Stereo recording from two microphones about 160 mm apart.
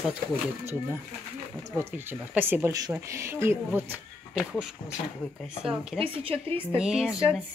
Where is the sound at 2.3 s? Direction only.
15° right (ahead or behind).